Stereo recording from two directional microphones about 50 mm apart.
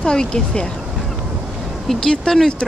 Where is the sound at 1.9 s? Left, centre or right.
Centre.